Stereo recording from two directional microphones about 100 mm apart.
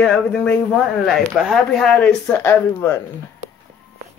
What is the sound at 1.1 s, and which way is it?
Speech, centre (ahead or behind).